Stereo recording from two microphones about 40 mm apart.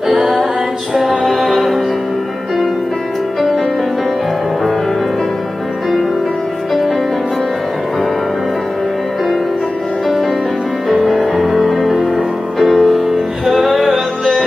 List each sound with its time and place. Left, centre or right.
0.1 s female singing: centre
0.9 s music: centre
10.0 s music: centre